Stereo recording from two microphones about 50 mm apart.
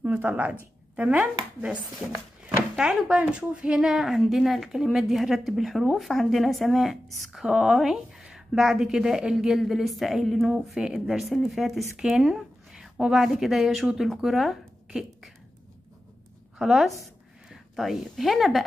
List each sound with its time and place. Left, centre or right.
0.0 s speech: right
3.1 s speech: right
3.7 s a woman's voice: centre
9.6 s a woman's voice: centre
12.0 s speech: centre
12.8 s a woman's voice: centre
16.5 s a woman's voice: centre